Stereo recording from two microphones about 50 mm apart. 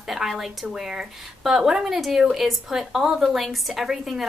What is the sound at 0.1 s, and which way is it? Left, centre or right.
A woman's voice, centre.